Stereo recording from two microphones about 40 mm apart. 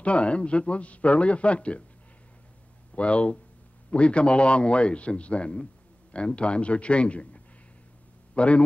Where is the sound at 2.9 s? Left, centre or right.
Left.